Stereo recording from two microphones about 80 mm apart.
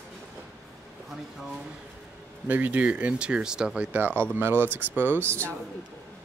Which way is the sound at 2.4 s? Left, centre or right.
Right.